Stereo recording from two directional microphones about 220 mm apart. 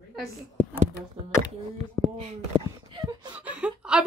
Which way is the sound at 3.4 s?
5° right (ahead or behind).